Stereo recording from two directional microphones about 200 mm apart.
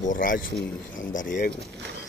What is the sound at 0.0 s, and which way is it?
Speech, 40° left (ahead or behind).